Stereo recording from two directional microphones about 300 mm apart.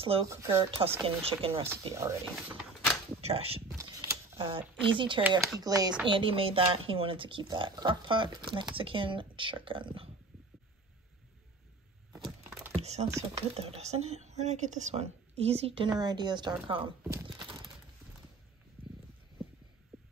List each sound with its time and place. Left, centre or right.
0.0 s speech: centre
3.2 s typing: centre
5.2 s speech: centre
12.8 s a woman's voice: right
18.8 s stomach rumble: centre